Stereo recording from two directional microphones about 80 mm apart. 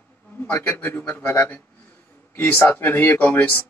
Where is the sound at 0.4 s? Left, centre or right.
Left.